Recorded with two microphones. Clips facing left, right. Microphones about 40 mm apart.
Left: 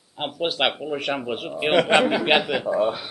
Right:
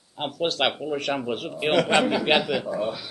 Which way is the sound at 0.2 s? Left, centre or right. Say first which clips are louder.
Left 1 dB; centre.